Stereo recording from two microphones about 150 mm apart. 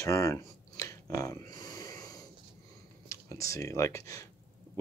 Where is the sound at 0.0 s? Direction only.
20° left (ahead or behind).